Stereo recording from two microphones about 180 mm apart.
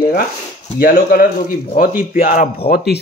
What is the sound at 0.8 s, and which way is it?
Speech, 55° left (ahead or behind).